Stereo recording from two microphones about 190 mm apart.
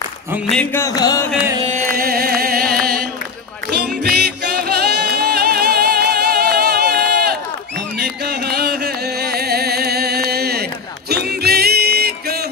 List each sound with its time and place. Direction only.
0.5 s a sound: 5° left (ahead or behind)
0.8 s music: 20° left (ahead or behind)
1.7 s carnatic music: 50° right (ahead or behind)
3.7 s music: 55° right (ahead or behind)